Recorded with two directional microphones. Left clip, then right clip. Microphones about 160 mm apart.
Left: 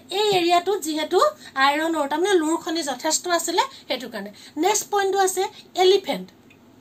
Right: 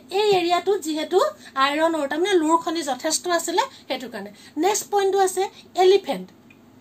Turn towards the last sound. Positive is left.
turn(degrees=-10)  # may be behind; listen again after turning